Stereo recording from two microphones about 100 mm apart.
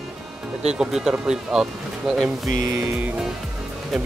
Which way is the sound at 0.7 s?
5° right (ahead or behind).